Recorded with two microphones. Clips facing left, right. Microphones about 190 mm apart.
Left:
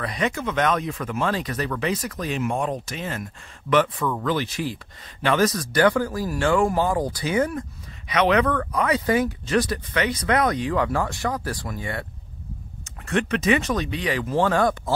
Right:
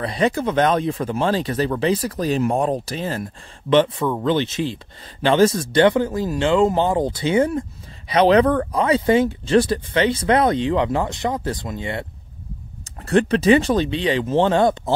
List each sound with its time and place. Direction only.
0.0 s speech: 30° right (ahead or behind)
13.0 s speech: 35° right (ahead or behind)